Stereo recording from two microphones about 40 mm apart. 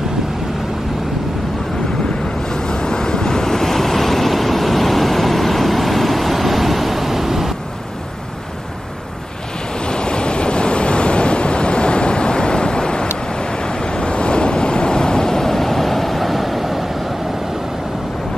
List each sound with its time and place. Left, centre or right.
2.5 s waves: centre
9.8 s waves: left; by 16.9 s centre